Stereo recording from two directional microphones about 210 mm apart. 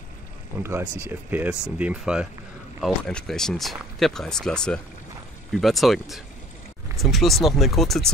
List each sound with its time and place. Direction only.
0.6 s speech: 10° right (ahead or behind)